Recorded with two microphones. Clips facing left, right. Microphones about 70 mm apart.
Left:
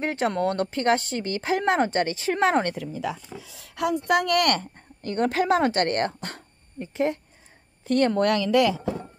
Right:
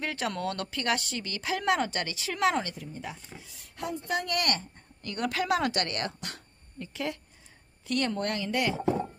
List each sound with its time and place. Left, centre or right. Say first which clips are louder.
0.0 s speech: left 7 dB; left
2.6 s speech: left 10 dB; left
3.5 s a woman's voice: left 10 dB; left
4.7 s speech: left 10 dB; left
8.2 s speech: left 10 dB; left